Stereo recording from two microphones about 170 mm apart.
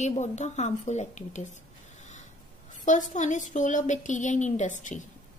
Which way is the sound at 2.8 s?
45° left (ahead or behind).